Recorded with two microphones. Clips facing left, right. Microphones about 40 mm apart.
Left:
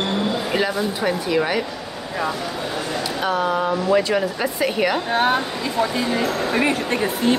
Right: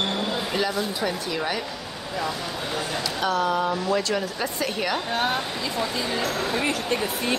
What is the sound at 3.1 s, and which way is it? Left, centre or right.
Speech, centre.